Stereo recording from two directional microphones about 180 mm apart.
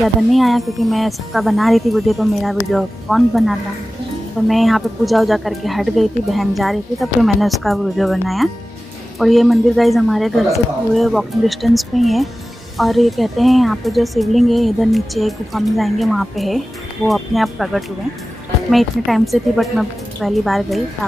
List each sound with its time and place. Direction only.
0.0 s a woman's voice: centre (ahead or behind)